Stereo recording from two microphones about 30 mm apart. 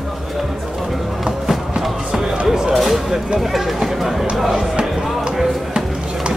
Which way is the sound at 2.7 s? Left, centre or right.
Centre.